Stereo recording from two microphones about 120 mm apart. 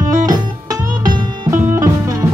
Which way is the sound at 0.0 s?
30° right (ahead or behind).